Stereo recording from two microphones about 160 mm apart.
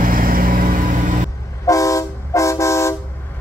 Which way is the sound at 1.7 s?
20° left (ahead or behind).